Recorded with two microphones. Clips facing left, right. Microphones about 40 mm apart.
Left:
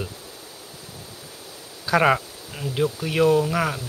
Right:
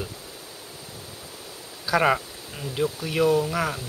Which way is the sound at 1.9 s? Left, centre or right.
Centre.